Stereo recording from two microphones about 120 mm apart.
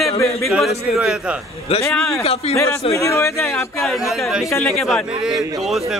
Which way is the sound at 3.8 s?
Centre (ahead or behind).